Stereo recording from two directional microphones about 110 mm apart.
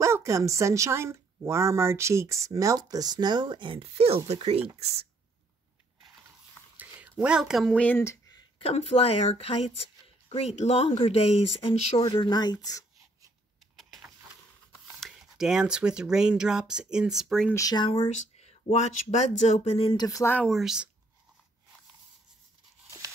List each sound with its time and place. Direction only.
0.0 s speech: 30° right (ahead or behind); by 5.0 s 70° right (ahead or behind)
6.8 s a sound: 10° right (ahead or behind)
7.7 s speech: 10° left (ahead or behind)
8.0 s a sound: 25° left (ahead or behind)
8.5 s a woman's voice: 70° left (ahead or behind)
12.2 s speech: 40° left (ahead or behind)
15.0 s speech: 5° right (ahead or behind)
17.6 s speech: 35° left (ahead or behind)
18.1 s speech: 80° left; by 20.0 s 60° left (ahead or behind)
20.0 s speech: 30° left (ahead or behind)
20.4 s speech: centre (ahead or behind)
22.8 s a sound: 30° right (ahead or behind)